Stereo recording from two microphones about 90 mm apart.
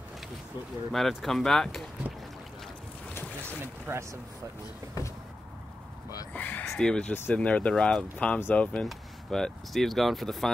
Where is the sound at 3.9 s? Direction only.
25° right (ahead or behind).